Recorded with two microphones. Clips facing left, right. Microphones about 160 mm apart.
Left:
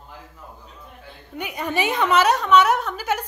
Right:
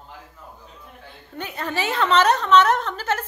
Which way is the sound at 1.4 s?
15° left (ahead or behind).